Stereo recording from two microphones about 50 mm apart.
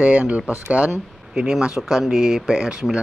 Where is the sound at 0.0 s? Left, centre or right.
Right.